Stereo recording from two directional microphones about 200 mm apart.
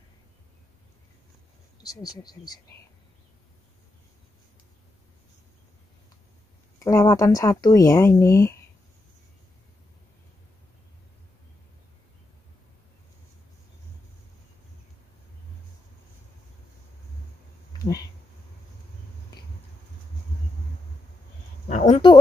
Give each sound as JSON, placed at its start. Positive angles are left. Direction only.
{"t": 1.9, "sound": "speech", "side_deg": 20}
{"t": 6.8, "sound": "speech", "side_deg": 15}
{"t": 21.6, "sound": "a sound", "side_deg": 35}